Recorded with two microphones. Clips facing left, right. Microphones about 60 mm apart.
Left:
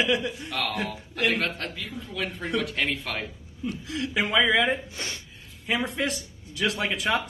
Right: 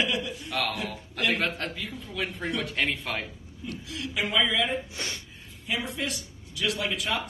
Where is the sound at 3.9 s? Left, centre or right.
Left.